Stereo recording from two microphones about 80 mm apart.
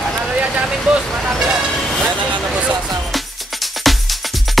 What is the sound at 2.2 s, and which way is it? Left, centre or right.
Speech, centre.